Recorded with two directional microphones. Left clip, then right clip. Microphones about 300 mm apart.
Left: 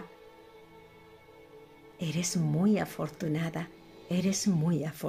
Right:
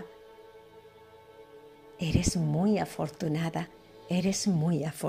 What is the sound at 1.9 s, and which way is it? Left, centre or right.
Speech, centre.